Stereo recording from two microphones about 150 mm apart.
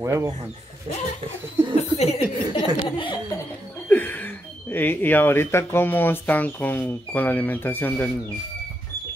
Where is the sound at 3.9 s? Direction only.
15° left (ahead or behind).